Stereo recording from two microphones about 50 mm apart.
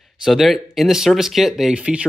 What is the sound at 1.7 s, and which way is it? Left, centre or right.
Speech, centre.